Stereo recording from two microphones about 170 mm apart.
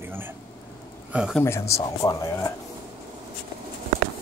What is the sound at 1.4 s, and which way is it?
Speech, 15° left (ahead or behind).